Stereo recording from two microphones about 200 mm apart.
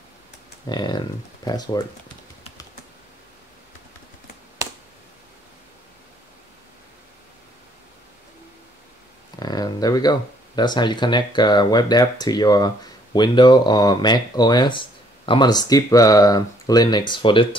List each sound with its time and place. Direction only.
0.7 s speech: 20° left (ahead or behind)
9.4 s speech: 20° left (ahead or behind)